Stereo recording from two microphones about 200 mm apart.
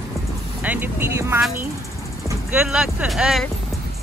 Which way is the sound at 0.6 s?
10° right (ahead or behind).